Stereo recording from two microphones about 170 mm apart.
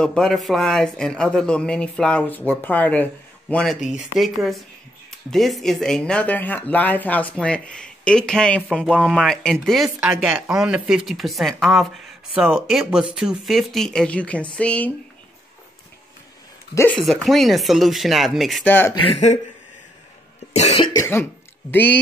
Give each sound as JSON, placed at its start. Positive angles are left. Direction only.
{"t": 0.0, "sound": "speech", "side_deg": 5}
{"t": 17.0, "sound": "speech", "side_deg": 0}
{"t": 19.0, "sound": "speech", "side_deg": 40}
{"t": 20.5, "sound": "speech", "side_deg": 40}
{"t": 20.8, "sound": "speech", "side_deg": 15}